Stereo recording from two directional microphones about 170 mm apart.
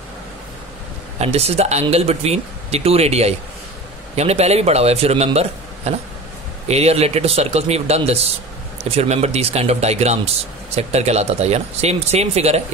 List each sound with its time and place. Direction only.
1.2 s speech: 40° right (ahead or behind)